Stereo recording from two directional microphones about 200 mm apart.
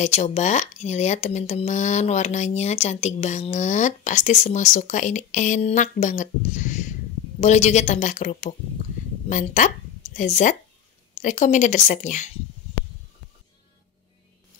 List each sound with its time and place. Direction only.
0.0 s speech: 35° left (ahead or behind)